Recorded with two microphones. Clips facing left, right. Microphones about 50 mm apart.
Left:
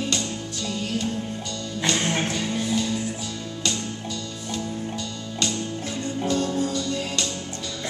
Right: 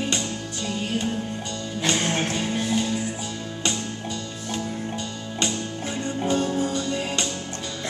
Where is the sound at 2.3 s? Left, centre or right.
Right.